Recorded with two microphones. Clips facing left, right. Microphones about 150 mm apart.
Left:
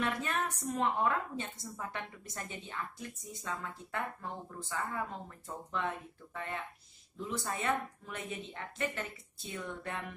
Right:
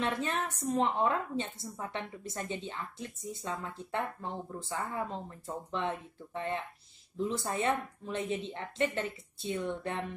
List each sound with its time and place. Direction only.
0.0 s a woman's voice: 25° right (ahead or behind)